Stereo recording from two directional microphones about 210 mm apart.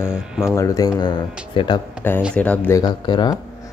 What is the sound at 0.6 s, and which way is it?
Speech, 15° left (ahead or behind).